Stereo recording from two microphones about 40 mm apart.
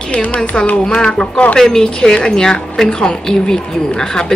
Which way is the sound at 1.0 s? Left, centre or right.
Left.